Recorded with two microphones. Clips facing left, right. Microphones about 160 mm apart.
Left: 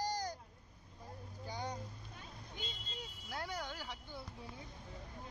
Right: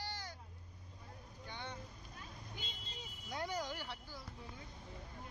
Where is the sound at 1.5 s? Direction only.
40° left (ahead or behind).